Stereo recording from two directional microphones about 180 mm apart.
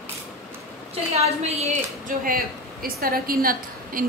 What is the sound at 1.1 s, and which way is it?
A woman's voice, 35° right (ahead or behind).